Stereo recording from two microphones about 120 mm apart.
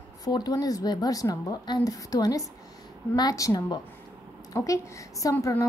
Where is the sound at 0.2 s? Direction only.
35° left (ahead or behind).